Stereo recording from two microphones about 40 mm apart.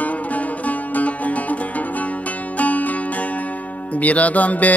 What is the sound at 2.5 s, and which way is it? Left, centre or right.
Music, left.